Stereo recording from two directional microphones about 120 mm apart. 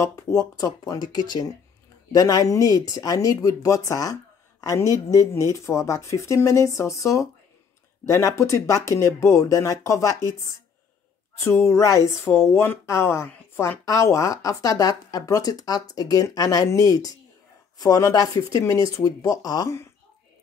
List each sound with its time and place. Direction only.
0.0 s speech: 30° left (ahead or behind)
11.3 s speech: 25° left (ahead or behind)